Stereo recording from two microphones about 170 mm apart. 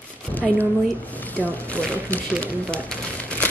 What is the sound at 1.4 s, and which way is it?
Speech, 10° left (ahead or behind).